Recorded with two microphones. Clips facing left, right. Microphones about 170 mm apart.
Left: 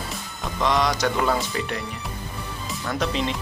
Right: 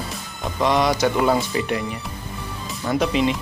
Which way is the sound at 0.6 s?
15° right (ahead or behind).